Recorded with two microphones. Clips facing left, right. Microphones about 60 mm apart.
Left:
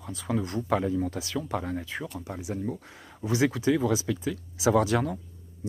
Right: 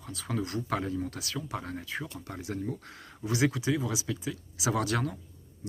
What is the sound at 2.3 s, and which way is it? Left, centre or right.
Speech, centre.